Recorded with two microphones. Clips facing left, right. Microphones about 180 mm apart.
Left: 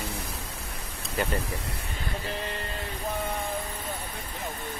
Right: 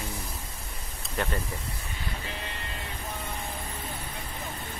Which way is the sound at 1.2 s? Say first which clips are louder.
Left 2 dB; 5° left (ahead or behind).